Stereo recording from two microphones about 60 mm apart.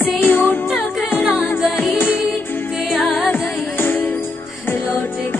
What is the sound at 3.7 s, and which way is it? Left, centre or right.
Music, left.